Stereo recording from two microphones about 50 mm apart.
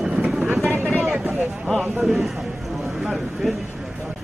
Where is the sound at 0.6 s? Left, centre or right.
Right.